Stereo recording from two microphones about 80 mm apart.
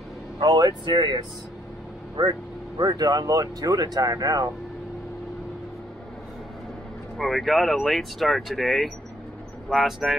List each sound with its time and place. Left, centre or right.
0.4 s speech: right
2.8 s speech: right
7.2 s speech: centre